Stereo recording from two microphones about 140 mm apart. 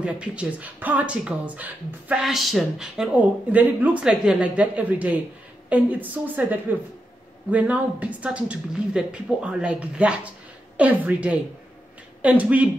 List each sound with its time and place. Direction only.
0.0 s speech: 10° right (ahead or behind)
2.2 s speech: centre (ahead or behind)